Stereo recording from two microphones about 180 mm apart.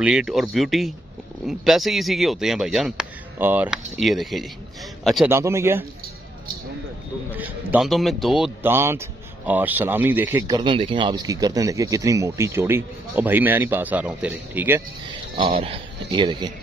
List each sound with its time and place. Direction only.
0.0 s a man's voice: 5° right (ahead or behind)
5.3 s speech: 15° right (ahead or behind)
7.3 s speech: 10° right (ahead or behind)
8.6 s speech: 15° right (ahead or behind)
15.6 s speech: 30° right (ahead or behind)